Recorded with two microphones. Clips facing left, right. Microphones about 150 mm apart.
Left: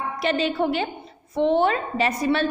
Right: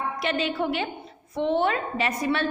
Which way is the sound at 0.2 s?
35° left (ahead or behind).